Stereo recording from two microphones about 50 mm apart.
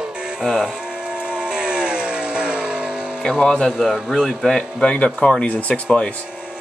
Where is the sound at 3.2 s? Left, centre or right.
Centre.